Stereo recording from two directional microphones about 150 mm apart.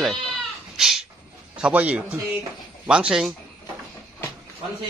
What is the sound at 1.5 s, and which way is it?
A man's voice, 10° right (ahead or behind).